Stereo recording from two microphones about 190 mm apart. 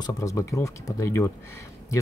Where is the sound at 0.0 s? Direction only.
15° left (ahead or behind).